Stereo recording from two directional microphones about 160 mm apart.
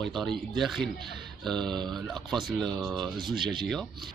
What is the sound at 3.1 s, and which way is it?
Speech, 30° right (ahead or behind).